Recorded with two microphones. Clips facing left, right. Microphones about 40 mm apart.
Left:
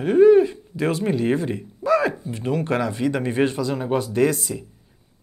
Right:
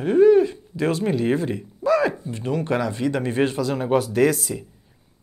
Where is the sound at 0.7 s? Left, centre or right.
Centre.